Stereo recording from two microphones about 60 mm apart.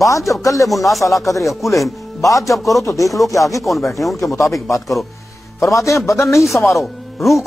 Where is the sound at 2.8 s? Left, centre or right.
Left.